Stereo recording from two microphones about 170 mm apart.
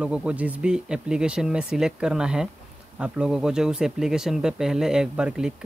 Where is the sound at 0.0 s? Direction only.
5° right (ahead or behind).